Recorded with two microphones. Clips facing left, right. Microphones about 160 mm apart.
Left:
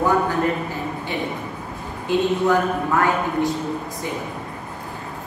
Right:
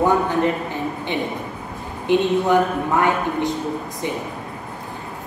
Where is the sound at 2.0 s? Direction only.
20° right (ahead or behind).